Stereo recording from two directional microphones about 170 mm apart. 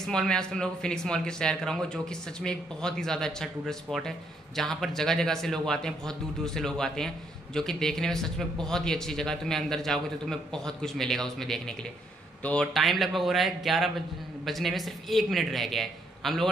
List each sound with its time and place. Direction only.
0.0 s a man's voice: 5° left (ahead or behind)